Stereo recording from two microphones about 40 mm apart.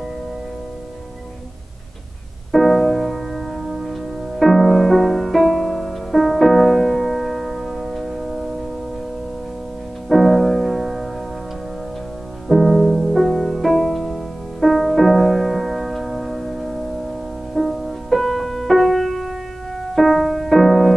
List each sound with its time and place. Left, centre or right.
2.5 s music: centre
10.0 s music: centre
12.4 s music: centre